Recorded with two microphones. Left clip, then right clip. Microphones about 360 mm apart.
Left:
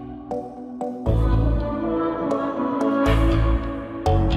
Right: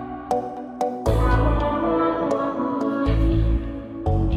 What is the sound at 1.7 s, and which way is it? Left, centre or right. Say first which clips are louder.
Music: right 1 dB; centre.